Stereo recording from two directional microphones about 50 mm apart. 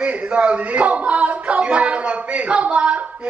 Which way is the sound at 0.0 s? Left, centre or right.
Right.